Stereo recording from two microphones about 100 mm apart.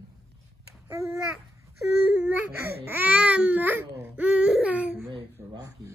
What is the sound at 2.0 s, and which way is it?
Speech, 20° right (ahead or behind).